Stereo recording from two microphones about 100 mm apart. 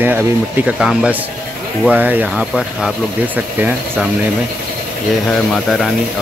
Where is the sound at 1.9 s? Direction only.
15° right (ahead or behind).